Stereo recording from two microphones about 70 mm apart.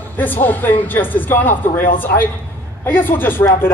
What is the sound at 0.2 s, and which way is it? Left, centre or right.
A man's voice, left.